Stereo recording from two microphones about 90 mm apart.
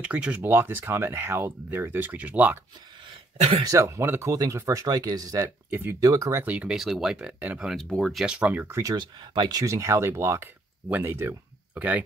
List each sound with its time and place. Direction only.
0.0 s speech: 15° right (ahead or behind)
3.6 s speech: 35° right (ahead or behind)
6.4 s speech: 15° right (ahead or behind)
6.8 s speech: 5° right (ahead or behind)
7.7 s speech: centre (ahead or behind)
8.3 s speech: 15° right (ahead or behind)
8.9 s speech: 55° right (ahead or behind)
9.6 s speech: 35° right (ahead or behind); by 12.0 s 15° right (ahead or behind)